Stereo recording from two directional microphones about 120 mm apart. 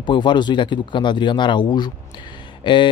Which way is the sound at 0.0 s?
40° left (ahead or behind).